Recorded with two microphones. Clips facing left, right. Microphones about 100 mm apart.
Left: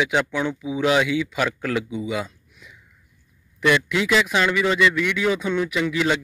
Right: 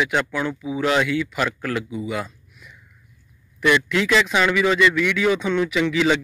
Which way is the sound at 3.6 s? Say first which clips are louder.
Right 1 dB; 10° left (ahead or behind).